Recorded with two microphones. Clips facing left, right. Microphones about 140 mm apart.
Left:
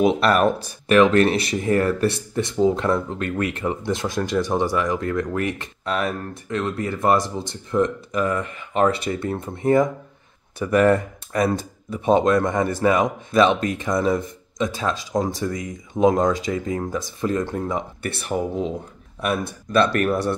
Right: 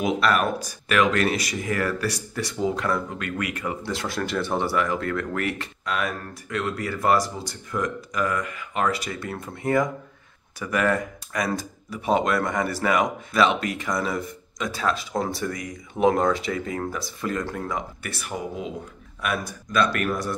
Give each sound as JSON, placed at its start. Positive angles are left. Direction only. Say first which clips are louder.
{"t": 0.0, "sound": "speech", "louder": "left 5 dB", "side_deg": 30}
{"t": 19.7, "sound": "speech", "louder": "left 5 dB", "side_deg": 30}